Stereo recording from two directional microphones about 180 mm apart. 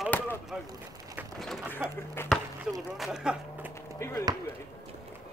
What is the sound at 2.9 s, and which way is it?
Music, centre (ahead or behind).